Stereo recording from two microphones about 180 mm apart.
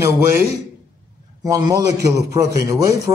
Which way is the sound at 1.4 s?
20° right (ahead or behind).